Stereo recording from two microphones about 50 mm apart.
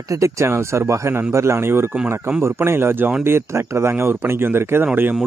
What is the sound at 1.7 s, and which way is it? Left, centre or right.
A man's voice, right.